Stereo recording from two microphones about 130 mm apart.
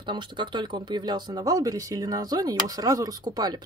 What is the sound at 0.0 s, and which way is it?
Speech, 35° right (ahead or behind).